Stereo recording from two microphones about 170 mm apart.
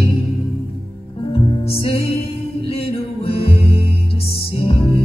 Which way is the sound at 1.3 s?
30° left (ahead or behind).